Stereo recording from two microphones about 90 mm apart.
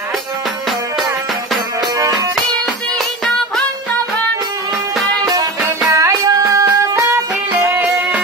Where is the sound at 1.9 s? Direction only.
40° right (ahead or behind).